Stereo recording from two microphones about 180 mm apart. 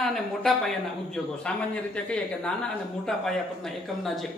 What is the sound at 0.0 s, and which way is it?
Speech, centre (ahead or behind).